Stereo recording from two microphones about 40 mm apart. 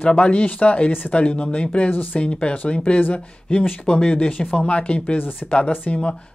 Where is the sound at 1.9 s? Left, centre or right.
Left.